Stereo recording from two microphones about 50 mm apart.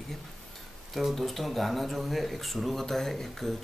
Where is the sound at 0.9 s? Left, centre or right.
Centre.